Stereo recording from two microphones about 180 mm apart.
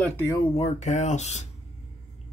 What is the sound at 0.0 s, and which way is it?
Speech, 10° left (ahead or behind).